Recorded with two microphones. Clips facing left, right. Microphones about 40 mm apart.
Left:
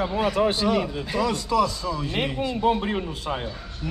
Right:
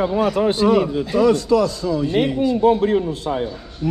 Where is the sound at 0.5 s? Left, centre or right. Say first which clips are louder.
Right 7 dB; right.